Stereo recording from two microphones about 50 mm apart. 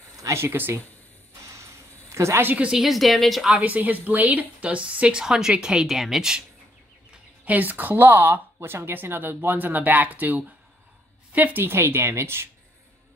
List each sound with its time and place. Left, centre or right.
0.3 s speech: right
1.5 s a sound: right
2.7 s speech: centre
3.5 s a woman's voice: right
5.2 s speech: centre
7.4 s speech: right
8.5 s speech: right
11.7 s speech: right